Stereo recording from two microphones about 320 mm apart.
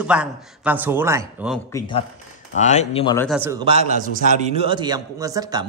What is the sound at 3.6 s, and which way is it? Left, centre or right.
A man's voice, centre.